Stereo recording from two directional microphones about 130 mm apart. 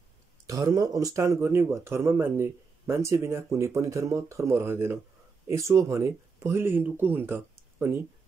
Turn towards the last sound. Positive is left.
turn(degrees=-20)  # may be behind; listen again after turning